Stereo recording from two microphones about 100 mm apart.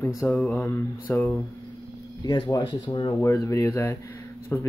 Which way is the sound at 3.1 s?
30° left (ahead or behind).